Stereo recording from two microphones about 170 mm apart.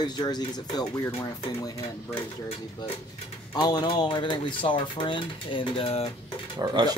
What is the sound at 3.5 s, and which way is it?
Speech, 25° left (ahead or behind).